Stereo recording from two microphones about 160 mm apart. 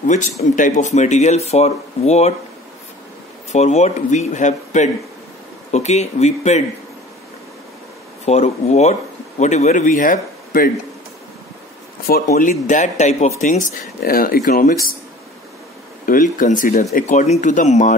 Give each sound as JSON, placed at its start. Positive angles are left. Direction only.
{"t": 0.0, "sound": "speech", "side_deg": 50}
{"t": 3.5, "sound": "speech", "side_deg": 45}
{"t": 8.3, "sound": "speech", "side_deg": 40}
{"t": 12.3, "sound": "speech", "side_deg": 50}
{"t": 16.1, "sound": "speech", "side_deg": 55}